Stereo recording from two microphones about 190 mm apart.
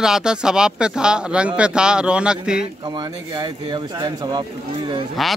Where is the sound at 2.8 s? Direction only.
20° right (ahead or behind).